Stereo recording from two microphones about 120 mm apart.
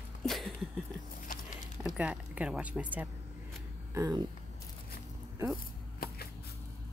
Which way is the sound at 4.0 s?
35° right (ahead or behind).